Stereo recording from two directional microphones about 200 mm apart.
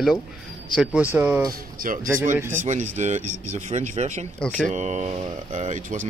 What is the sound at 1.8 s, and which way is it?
Speech, 45° right (ahead or behind).